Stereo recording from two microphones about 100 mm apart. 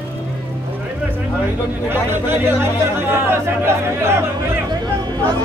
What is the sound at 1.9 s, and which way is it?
Speech, 20° right (ahead or behind).